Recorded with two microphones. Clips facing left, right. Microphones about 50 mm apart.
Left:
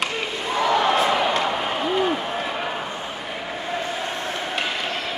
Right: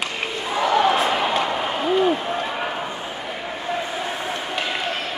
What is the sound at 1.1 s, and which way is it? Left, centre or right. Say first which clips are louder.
Basketball bounce: left 1 dB; centre.